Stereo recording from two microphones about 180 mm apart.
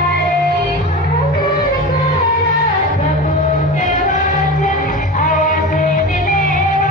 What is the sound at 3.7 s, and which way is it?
Music, 50° left (ahead or behind).